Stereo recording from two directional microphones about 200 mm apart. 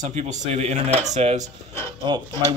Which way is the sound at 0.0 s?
35° right (ahead or behind).